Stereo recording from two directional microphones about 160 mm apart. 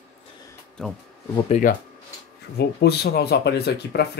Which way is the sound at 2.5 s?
90° left.